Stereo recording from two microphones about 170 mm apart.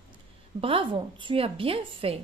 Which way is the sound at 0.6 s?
30° right (ahead or behind).